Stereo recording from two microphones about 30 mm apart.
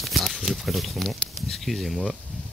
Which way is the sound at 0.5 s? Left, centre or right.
Centre.